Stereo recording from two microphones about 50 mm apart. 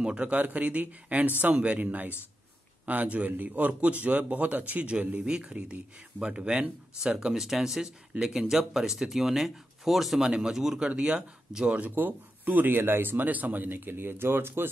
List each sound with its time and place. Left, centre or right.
0.0 s a man's voice: centre
0.3 s a man's voice: right
5.2 s speech: right
10.8 s speech: centre
11.7 s speech: right